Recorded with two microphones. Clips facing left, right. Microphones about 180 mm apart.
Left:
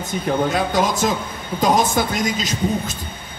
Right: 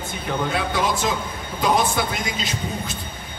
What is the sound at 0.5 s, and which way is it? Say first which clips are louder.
A man's voice: left 3 dB; 40° left (ahead or behind).